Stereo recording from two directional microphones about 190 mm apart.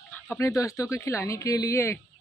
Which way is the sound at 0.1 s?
15° left (ahead or behind).